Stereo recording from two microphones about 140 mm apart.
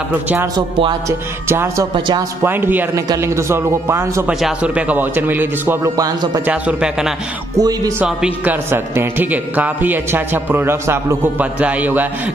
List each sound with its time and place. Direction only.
0.6 s speech: 35° right (ahead or behind)
1.0 s a man's voice: 20° right (ahead or behind)
4.3 s a man's voice: 5° right (ahead or behind)
5.9 s speech: 25° right (ahead or behind)
6.4 s a man's voice: 10° right (ahead or behind)
7.5 s speech: 25° right (ahead or behind)
8.0 s a man's voice: 10° right (ahead or behind)